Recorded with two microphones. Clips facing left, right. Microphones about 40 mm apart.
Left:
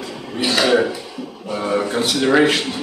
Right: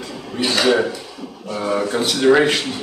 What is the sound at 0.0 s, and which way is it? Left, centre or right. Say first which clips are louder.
Dishes: even; centre.